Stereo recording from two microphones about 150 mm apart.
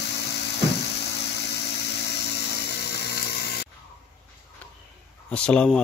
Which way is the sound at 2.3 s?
90° left.